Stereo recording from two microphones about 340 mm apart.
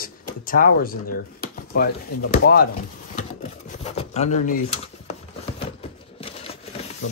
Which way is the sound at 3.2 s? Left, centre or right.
Left.